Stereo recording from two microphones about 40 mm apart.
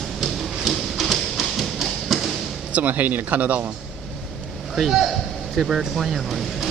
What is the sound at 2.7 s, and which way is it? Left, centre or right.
Speech, right.